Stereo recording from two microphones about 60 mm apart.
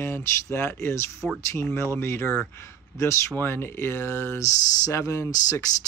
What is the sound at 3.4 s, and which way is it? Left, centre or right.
Speech, left.